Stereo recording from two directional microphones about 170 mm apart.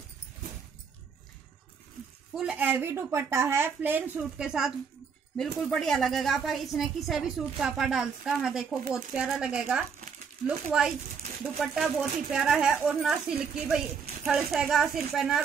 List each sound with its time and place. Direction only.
2.3 s a woman's voice: 5° right (ahead or behind)
9.9 s crumpling: 45° right (ahead or behind)
10.7 s a woman's voice: 5° right (ahead or behind)